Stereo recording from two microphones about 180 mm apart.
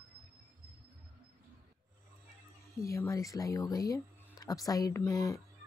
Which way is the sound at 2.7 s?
15° left (ahead or behind).